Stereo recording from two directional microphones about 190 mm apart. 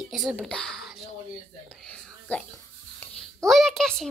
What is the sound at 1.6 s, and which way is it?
Whispering, 5° left (ahead or behind).